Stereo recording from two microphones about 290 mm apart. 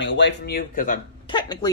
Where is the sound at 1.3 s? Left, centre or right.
Centre.